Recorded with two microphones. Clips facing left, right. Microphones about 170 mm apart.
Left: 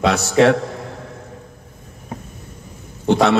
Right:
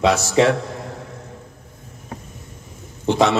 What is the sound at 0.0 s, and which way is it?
Speech, 60° left (ahead or behind).